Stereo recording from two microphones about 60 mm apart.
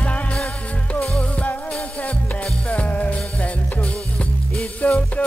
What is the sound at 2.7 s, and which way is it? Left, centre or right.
Music, left.